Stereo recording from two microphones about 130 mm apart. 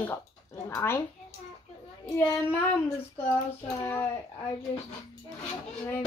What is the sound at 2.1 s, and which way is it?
Speech, 20° left (ahead or behind).